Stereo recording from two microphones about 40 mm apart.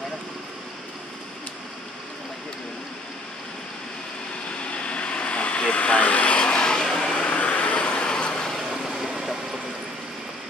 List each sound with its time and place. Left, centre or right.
4.5 s vehicle: left
7.2 s vehicle: left
8.7 s vehicle: centre